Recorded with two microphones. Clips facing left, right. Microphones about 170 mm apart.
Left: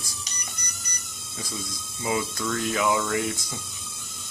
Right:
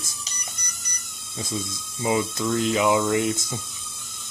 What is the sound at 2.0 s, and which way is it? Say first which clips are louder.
Speech: right 4 dB; 25° right (ahead or behind).